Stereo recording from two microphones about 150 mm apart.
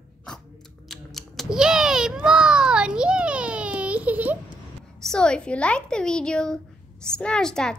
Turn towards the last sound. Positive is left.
turn(degrees=5)  # may be behind; listen again after turning